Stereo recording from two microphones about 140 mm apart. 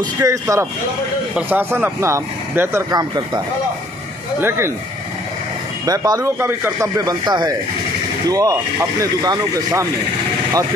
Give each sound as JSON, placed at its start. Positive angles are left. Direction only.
{"t": 0.2, "sound": "speech", "side_deg": -25}
{"t": 4.4, "sound": "speech", "side_deg": -15}
{"t": 5.9, "sound": "speech", "side_deg": -25}